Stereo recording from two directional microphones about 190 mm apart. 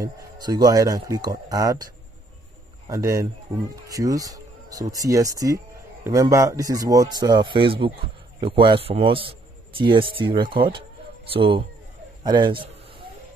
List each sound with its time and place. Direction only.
0.0 s speech: 20° right (ahead or behind)
2.9 s a man's voice: 15° right (ahead or behind)